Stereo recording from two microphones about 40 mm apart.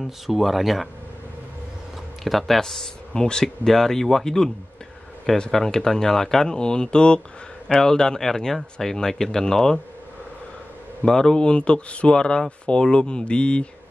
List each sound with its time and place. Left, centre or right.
0.0 s speech: centre
2.2 s speech: centre
3.2 s speech: left
3.4 s speech: centre
5.5 s speech: centre
11.1 s speech: centre